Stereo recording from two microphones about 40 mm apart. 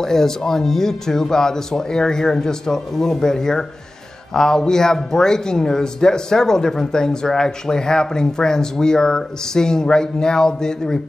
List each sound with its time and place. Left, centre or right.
0.0 s speech: centre